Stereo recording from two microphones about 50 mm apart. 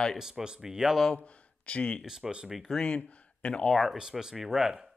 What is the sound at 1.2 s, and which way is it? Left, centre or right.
Speech, left.